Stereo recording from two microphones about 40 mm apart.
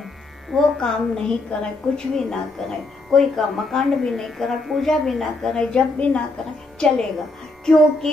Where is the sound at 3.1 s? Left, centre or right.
Centre.